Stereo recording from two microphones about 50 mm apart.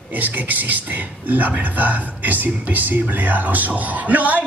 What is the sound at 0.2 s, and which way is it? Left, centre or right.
Speech, right.